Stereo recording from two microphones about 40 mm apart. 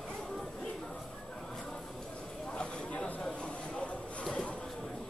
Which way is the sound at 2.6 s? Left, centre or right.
Left.